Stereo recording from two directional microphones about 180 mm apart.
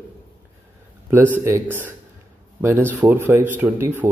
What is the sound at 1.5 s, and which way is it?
Speech, 15° right (ahead or behind).